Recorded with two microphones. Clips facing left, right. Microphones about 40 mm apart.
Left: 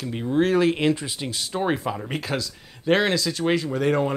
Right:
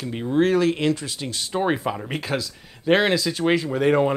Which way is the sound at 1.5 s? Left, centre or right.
Centre.